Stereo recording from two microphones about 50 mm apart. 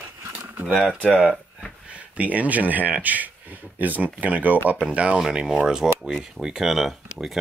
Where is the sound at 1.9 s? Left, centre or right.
Right.